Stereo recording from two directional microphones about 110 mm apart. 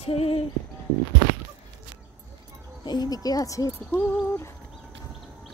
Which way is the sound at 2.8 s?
40° left (ahead or behind).